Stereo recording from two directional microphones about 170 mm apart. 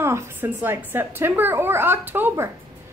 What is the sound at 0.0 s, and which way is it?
A woman's voice, 15° right (ahead or behind).